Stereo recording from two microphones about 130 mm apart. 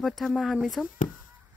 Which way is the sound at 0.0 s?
Centre (ahead or behind).